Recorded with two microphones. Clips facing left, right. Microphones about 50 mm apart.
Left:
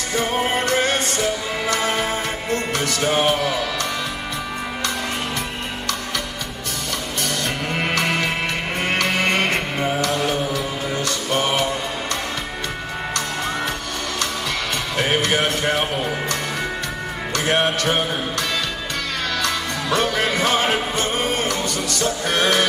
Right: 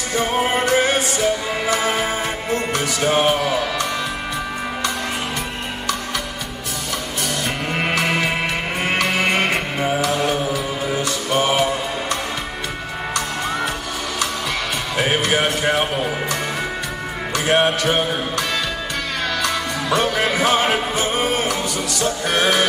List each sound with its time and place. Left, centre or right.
0.1 s music: centre
7.7 s music: centre
15.0 s speech: centre
17.5 s music: centre
19.4 s music: centre